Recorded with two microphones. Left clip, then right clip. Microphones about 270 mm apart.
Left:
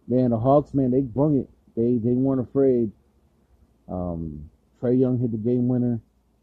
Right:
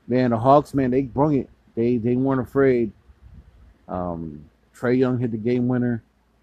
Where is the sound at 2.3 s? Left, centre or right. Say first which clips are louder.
Right 3 dB; centre.